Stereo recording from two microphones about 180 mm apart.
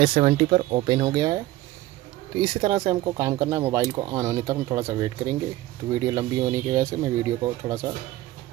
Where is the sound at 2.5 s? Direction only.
25° right (ahead or behind).